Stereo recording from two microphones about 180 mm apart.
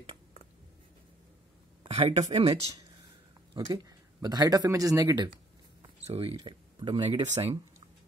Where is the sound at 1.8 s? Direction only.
30° right (ahead or behind).